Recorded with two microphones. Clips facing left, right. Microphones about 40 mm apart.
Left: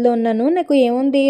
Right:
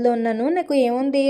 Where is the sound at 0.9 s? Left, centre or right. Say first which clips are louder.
Left 4 dB; left.